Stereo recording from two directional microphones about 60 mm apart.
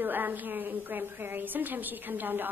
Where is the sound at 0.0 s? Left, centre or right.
Right.